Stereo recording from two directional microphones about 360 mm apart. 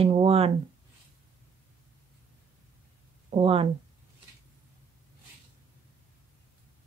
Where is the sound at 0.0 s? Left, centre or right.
Centre.